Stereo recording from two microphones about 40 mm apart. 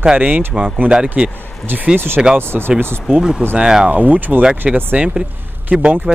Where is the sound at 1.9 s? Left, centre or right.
Right.